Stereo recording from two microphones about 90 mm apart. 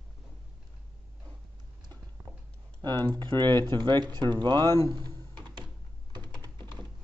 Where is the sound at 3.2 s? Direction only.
55° right (ahead or behind).